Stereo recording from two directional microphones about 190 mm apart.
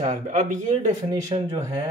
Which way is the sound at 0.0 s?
40° right (ahead or behind).